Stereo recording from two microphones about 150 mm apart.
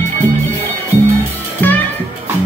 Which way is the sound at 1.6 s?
10° left (ahead or behind).